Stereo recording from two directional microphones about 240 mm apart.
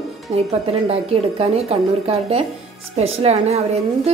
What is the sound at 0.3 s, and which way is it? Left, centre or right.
Speech, right.